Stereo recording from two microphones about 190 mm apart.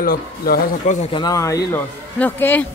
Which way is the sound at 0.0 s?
50° left (ahead or behind).